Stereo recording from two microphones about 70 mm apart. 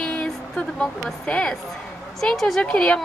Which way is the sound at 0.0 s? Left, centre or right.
Centre.